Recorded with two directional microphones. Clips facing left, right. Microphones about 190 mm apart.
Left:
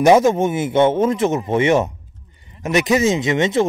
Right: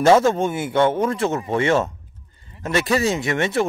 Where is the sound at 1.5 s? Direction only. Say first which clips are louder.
Left 2 dB; 20° left (ahead or behind).